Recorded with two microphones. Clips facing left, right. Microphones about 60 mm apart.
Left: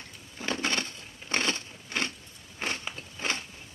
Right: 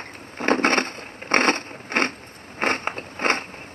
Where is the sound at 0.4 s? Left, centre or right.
Right.